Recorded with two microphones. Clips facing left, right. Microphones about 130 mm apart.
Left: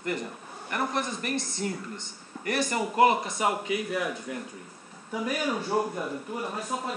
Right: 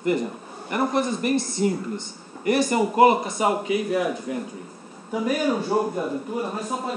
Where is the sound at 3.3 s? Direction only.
25° right (ahead or behind).